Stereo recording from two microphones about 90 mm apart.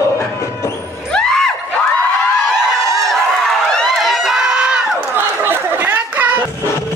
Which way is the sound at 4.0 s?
5° right (ahead or behind).